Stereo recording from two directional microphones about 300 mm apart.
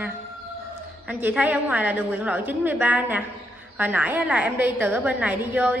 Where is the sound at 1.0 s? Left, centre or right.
Centre.